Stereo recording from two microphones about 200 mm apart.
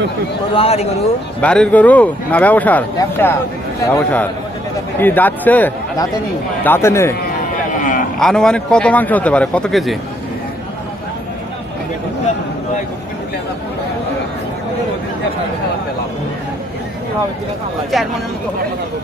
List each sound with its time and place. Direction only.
0.6 s speech: 30° left (ahead or behind)
1.4 s speech: 5° left (ahead or behind)
8.2 s a man's voice: 5° left (ahead or behind)
17.9 s a man's voice: centre (ahead or behind)